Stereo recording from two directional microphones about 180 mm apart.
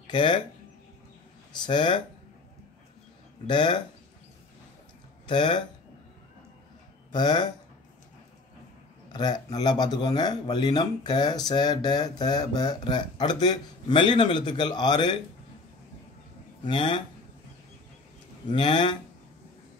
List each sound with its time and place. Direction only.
0.0 s speech: 25° left (ahead or behind)
1.5 s speech: 25° left (ahead or behind)
3.4 s speech: 25° left (ahead or behind)
5.2 s speech: 25° left (ahead or behind)
7.1 s speech: 25° left (ahead or behind)
9.1 s speech: 25° left (ahead or behind)
16.6 s speech: 25° left (ahead or behind)
18.5 s speech: 25° left (ahead or behind)